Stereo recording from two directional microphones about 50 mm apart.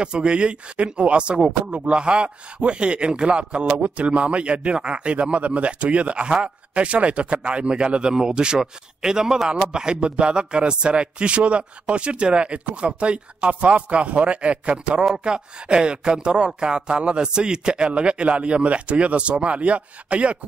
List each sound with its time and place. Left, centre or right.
0.0 s a man's voice: centre